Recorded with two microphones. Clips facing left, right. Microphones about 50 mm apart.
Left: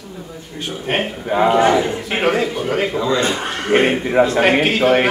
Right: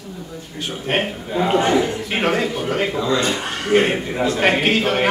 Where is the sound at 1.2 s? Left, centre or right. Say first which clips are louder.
Left 5 dB; left.